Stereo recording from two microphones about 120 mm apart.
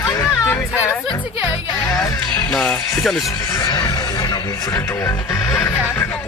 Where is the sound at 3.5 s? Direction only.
30° left (ahead or behind).